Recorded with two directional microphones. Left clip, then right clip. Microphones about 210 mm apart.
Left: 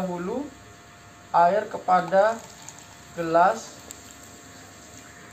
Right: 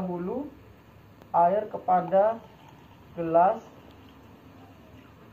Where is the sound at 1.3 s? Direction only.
20° left (ahead or behind).